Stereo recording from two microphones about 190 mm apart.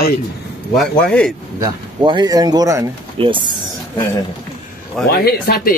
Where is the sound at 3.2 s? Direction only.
30° right (ahead or behind).